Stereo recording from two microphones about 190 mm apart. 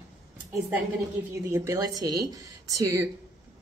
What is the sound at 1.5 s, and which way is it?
A woman's voice, 15° right (ahead or behind).